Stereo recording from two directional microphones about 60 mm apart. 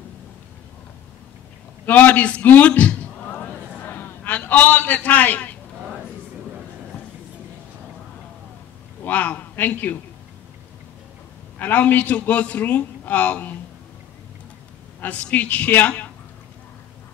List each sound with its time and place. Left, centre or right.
1.9 s a sound: left
9.0 s a man's voice: left
11.6 s a man's voice: left
15.0 s a woman's voice: left